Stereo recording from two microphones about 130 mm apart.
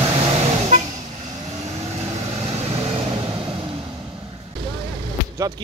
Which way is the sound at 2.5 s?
50° right (ahead or behind).